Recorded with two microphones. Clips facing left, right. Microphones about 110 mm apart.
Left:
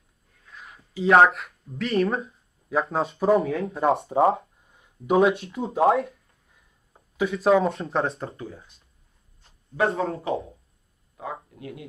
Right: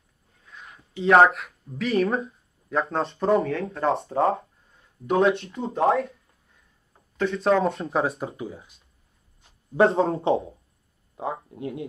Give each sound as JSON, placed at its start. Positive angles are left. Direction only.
{"t": 0.5, "sound": "speech", "side_deg": 0}
{"t": 4.6, "sound": "a sound", "side_deg": 10}
{"t": 5.4, "sound": "speech", "side_deg": 5}
{"t": 9.8, "sound": "speech", "side_deg": -30}